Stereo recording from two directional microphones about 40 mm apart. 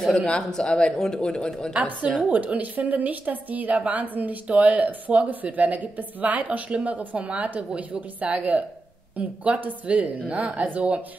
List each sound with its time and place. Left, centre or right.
0.1 s speech: left
0.5 s speech: centre
2.2 s a woman's voice: right